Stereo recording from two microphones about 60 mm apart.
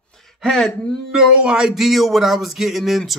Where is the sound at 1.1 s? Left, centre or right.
Centre.